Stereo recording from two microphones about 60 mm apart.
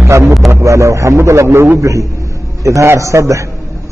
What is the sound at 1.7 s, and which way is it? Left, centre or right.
A man's voice, right.